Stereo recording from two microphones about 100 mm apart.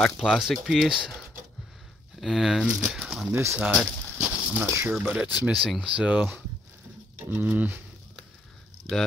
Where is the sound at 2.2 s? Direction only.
5° right (ahead or behind).